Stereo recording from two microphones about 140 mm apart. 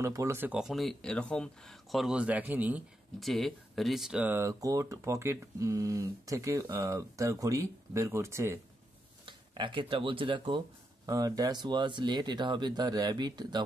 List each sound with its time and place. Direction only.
0.0 s speech: 20° right (ahead or behind)
0.5 s speech: 5° right (ahead or behind)
3.2 s speech: centre (ahead or behind); by 8.5 s 20° right (ahead or behind)
9.2 s speech: 35° right (ahead or behind)